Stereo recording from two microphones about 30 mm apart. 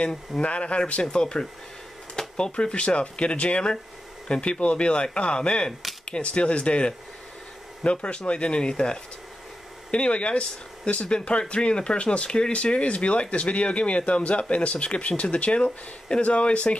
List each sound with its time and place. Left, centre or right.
0.4 s speech: left
1.1 s speech: left
9.8 s speech: left